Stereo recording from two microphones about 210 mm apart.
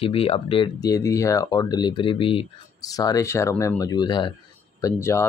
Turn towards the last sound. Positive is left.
turn(degrees=10)  # may be behind; listen again after turning